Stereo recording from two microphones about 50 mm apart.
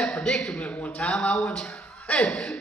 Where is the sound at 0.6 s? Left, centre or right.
Left.